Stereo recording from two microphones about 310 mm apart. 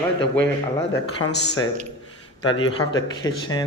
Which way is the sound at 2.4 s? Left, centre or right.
Centre.